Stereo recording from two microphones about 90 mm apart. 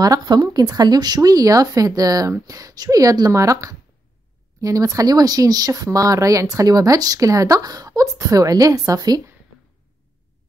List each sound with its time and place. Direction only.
0.0 s speech: 50° right (ahead or behind)